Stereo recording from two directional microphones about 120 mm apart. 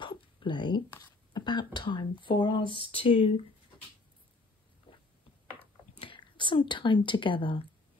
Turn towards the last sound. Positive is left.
turn(degrees=40)  # may be behind; listen again after turning